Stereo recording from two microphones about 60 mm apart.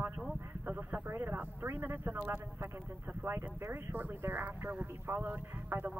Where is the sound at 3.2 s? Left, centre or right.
Right.